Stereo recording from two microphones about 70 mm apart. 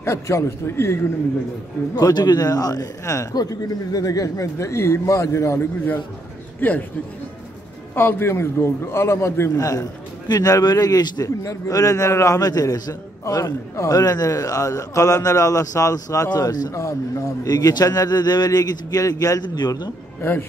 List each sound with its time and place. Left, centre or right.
0.0 s a man's voice: left
2.0 s a man's voice: left
6.6 s a man's voice: left
7.9 s a man's voice: left
9.6 s a man's voice: left
11.2 s a man's voice: left
12.4 s a man's voice: left
13.2 s a man's voice: left
16.3 s a man's voice: left
16.7 s a man's voice: left
17.5 s a man's voice: left
19.4 s a man's voice: left
20.2 s speech: left